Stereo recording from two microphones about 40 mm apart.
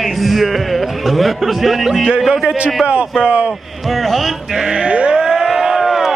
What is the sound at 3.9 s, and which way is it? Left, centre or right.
Speech, centre.